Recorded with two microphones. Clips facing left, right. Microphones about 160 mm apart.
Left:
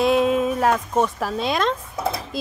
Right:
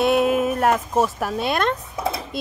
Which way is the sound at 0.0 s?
5° right (ahead or behind).